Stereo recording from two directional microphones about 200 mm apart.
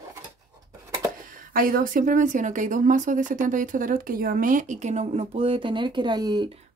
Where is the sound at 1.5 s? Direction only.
45° right (ahead or behind); by 6.5 s 20° right (ahead or behind).